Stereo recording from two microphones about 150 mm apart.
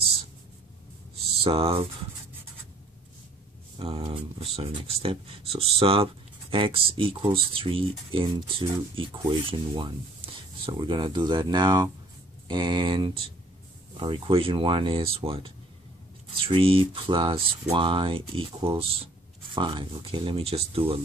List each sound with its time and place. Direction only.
1.4 s speech: 40° right (ahead or behind)
3.7 s speech: 40° right (ahead or behind)